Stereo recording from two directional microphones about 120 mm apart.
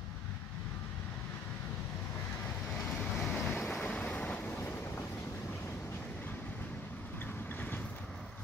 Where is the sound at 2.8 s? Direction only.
Centre (ahead or behind).